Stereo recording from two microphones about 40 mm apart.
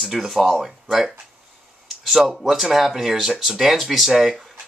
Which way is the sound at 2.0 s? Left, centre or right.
Centre.